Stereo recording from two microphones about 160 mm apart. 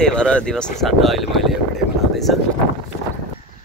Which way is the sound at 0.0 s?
5° left (ahead or behind).